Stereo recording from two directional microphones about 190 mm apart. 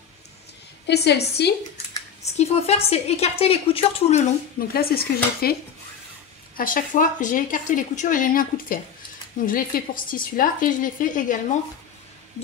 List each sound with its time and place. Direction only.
0.8 s a woman's voice: 60° left (ahead or behind)
2.2 s a woman's voice: 35° left (ahead or behind)
4.6 s a woman's voice: 55° left (ahead or behind)